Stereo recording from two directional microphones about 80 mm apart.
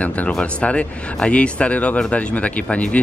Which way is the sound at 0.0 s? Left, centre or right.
Centre.